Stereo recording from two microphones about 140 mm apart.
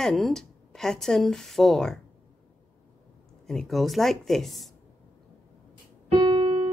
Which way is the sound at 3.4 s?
Centre (ahead or behind).